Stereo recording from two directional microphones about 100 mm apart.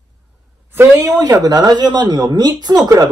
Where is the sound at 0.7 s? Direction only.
25° right (ahead or behind).